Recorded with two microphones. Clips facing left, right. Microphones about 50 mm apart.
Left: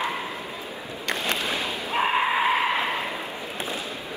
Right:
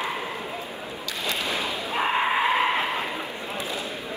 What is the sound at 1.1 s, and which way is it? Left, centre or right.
Boat, left.